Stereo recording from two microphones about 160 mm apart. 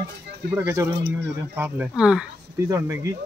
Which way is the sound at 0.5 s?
10° right (ahead or behind).